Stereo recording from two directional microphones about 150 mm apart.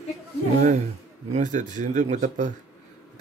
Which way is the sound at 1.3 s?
55° right (ahead or behind).